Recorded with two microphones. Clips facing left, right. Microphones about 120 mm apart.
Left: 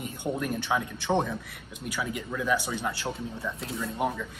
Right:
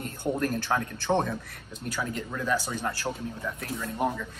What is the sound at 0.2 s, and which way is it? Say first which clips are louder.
A man's voice: right 2 dB; centre (ahead or behind).